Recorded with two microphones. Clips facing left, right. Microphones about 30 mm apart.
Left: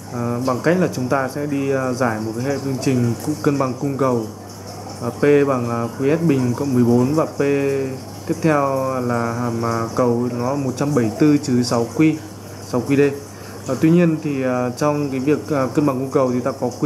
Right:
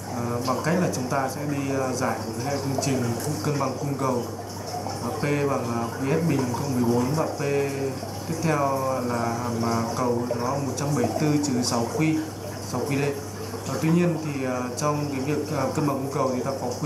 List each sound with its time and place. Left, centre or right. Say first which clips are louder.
0.1 s speech: left 5 dB; centre
7.3 s speech: left 7 dB; centre